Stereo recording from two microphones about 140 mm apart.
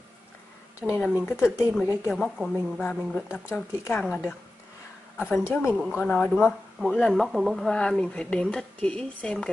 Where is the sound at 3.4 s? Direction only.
20° left (ahead or behind).